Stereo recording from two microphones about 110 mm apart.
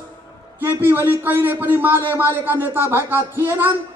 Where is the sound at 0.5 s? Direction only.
20° right (ahead or behind).